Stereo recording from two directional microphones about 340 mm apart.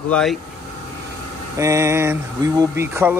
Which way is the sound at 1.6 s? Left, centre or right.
Centre.